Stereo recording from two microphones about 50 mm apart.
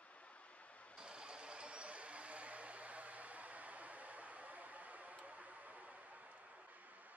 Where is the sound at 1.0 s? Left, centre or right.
Centre; by 6.0 s right.